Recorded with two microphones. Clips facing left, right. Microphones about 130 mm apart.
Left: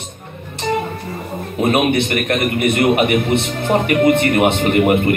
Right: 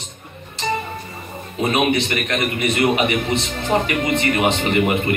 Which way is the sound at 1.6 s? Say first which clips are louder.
Left 3 dB; 55° left (ahead or behind).